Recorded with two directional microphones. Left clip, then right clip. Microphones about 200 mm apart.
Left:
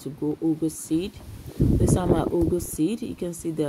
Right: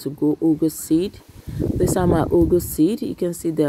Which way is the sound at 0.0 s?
30° right (ahead or behind).